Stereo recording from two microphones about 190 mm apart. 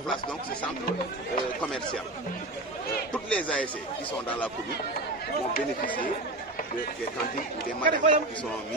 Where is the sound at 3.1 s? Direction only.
5° left (ahead or behind).